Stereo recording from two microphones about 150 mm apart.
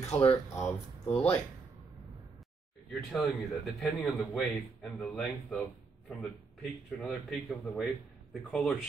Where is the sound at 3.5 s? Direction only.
5° left (ahead or behind).